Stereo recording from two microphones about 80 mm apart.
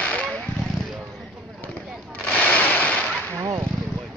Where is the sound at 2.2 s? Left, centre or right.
Centre.